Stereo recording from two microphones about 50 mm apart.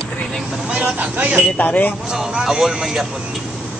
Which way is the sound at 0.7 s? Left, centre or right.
Right.